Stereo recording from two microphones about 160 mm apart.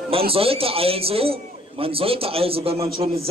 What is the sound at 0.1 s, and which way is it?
A man's voice, 35° right (ahead or behind).